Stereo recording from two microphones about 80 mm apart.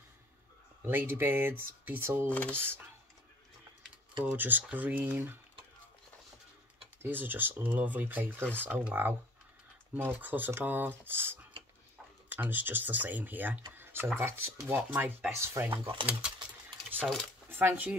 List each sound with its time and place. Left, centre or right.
0.8 s speech: right
2.2 s speech: centre
2.5 s speech: right
4.2 s speech: right
7.0 s speech: right
15.6 s speech: right
16.1 s speech: centre
17.5 s speech: right